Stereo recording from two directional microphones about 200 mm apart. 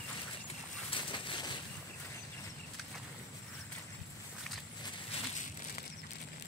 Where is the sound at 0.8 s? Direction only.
25° left (ahead or behind).